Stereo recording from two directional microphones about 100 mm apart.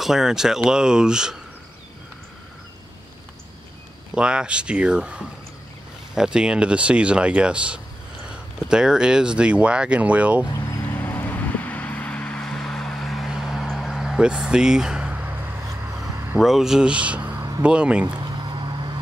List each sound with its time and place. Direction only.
0.0 s speech: 5° right (ahead or behind)
4.1 s speech: 10° right (ahead or behind)
10.8 s vehicle: 20° left (ahead or behind); by 13.7 s 5° right (ahead or behind)
13.7 s a sound: centre (ahead or behind)
16.3 s speech: 5° right (ahead or behind)
18.0 s vehicle: 45° right (ahead or behind)